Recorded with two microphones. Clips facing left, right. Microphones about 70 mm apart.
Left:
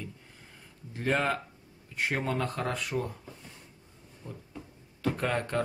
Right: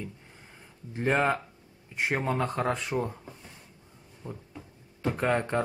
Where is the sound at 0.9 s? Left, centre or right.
Right.